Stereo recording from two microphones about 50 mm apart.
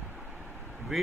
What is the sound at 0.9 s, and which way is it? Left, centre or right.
Speech, centre.